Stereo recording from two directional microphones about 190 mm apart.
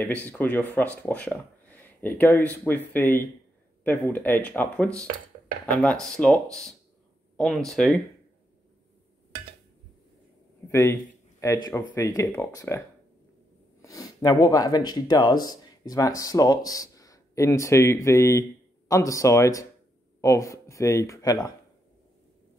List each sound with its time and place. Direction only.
0.0 s speech: 10° left (ahead or behind)
10.7 s speech: 15° left (ahead or behind)